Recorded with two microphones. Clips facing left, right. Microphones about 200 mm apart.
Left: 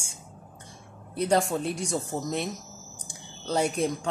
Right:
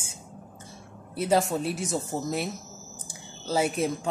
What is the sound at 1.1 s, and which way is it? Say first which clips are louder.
Speech: even; 5° right (ahead or behind).